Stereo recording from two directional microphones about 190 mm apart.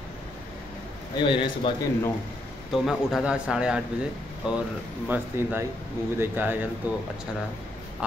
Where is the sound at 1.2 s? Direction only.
25° left (ahead or behind).